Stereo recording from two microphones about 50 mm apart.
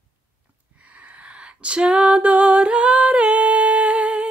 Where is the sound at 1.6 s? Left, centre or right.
Right.